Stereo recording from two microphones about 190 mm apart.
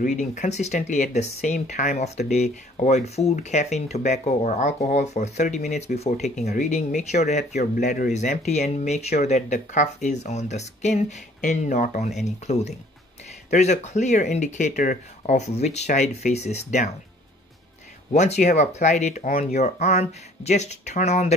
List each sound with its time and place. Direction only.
0.0 s speech: 40° left (ahead or behind)
18.1 s speech: 40° left (ahead or behind)